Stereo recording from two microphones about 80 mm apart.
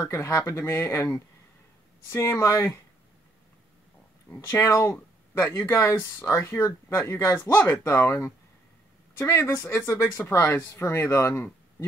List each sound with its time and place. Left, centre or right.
0.0 s speech: left
4.3 s speech: left